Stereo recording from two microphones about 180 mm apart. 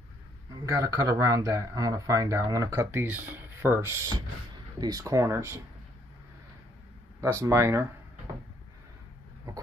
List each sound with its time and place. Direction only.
0.7 s speech: 20° right (ahead or behind)
7.2 s speech: 15° right (ahead or behind)